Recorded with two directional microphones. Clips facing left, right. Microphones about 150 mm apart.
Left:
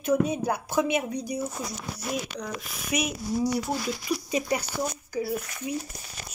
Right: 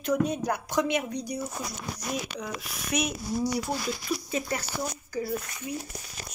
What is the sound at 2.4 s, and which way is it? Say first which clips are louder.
Speech: left 1 dB; centre (ahead or behind).